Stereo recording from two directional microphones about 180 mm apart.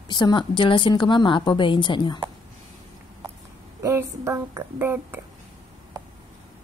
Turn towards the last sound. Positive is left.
turn(degrees=-10)  # may be behind; listen again after turning